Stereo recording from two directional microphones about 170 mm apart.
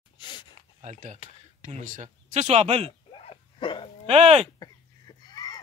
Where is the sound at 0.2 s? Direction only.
30° left (ahead or behind).